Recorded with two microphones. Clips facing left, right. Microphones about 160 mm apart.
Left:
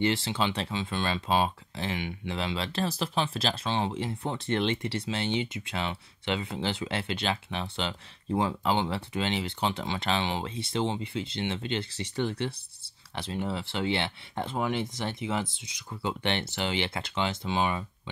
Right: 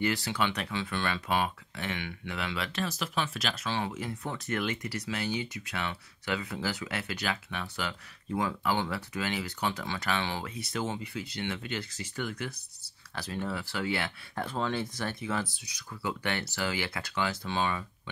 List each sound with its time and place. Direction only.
0.0 s speech: 25° left (ahead or behind)